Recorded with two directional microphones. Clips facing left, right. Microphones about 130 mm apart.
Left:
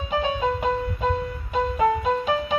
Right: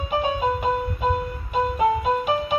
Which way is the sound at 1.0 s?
10° right (ahead or behind).